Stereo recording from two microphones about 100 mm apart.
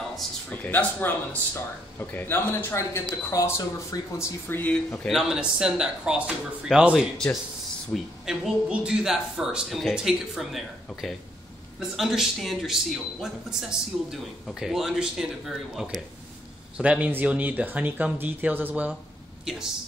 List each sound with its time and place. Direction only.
0.5 s a man's voice: 15° left (ahead or behind); by 4.3 s 35° left (ahead or behind)
4.5 s a man's voice: 20° left (ahead or behind)
5.0 s a man's voice: 5° right (ahead or behind)